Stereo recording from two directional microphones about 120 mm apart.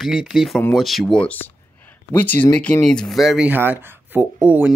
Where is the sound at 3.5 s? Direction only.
15° right (ahead or behind).